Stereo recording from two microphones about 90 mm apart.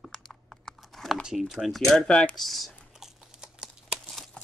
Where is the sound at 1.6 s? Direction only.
Centre (ahead or behind).